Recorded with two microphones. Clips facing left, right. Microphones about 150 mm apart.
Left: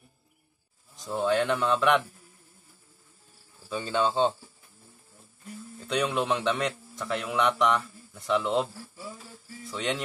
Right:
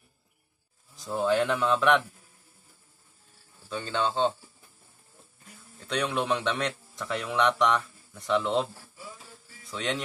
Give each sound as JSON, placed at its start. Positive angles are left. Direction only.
{"t": 0.9, "sound": "a man's voice", "side_deg": 0}
{"t": 3.6, "sound": "speech", "side_deg": 10}
{"t": 5.8, "sound": "a man's voice", "side_deg": 5}
{"t": 9.7, "sound": "music", "side_deg": 0}